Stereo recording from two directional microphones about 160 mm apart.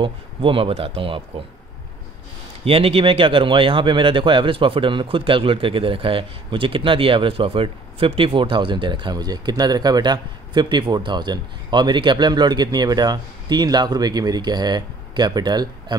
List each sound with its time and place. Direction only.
0.0 s speech: 35° right (ahead or behind)
2.6 s speech: 35° right (ahead or behind)